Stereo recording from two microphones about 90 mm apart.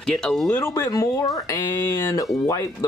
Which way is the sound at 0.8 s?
45° left (ahead or behind).